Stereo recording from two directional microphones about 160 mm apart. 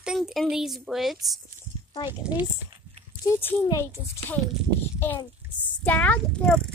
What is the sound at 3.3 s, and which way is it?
Speech, 15° left (ahead or behind).